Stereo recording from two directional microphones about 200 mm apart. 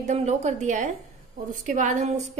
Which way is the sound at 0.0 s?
35° right (ahead or behind).